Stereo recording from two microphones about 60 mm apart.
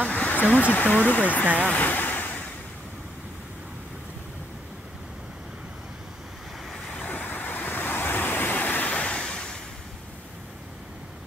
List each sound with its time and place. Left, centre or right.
0.1 s speech: left
1.4 s speech: right
1.7 s waves: left
6.9 s vehicle: left